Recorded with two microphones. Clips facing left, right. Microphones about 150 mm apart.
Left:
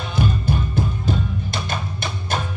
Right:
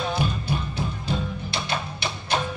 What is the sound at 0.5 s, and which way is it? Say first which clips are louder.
Music: left 5 dB; 45° left (ahead or behind).